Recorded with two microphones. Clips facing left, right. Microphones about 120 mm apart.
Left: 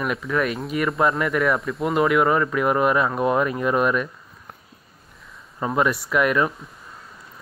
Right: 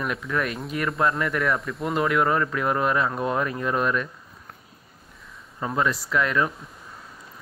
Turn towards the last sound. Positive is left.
turn(degrees=15)  # may be behind; listen again after turning